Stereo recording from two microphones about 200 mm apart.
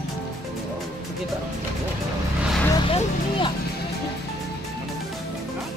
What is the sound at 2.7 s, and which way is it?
Speech, 25° left (ahead or behind).